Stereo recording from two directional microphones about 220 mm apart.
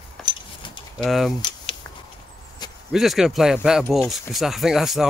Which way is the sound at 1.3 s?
20° left (ahead or behind).